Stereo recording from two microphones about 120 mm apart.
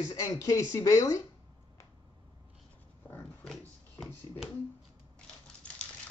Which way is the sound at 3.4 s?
Centre (ahead or behind).